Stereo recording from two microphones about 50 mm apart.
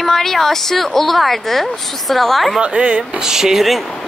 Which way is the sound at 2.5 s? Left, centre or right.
Right.